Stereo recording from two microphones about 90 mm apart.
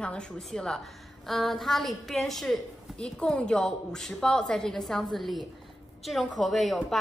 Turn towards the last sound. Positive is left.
turn(degrees=0)  # may be behind; listen again after turning